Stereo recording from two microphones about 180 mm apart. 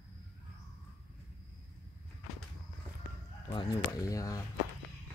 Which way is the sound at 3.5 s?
20° left (ahead or behind).